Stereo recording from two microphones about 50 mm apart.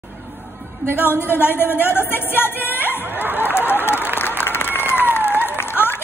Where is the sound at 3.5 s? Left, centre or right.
Left.